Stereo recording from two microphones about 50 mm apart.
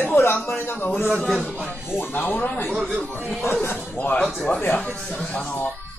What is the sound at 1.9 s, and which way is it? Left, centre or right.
Speech, left.